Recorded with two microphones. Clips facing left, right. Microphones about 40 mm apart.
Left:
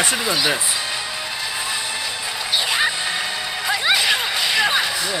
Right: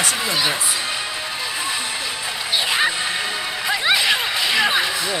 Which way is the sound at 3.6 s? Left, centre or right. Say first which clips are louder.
Even; centre.